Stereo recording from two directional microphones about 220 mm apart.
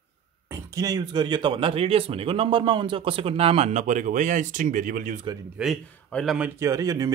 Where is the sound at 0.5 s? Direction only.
15° right (ahead or behind); by 5.2 s 35° right (ahead or behind).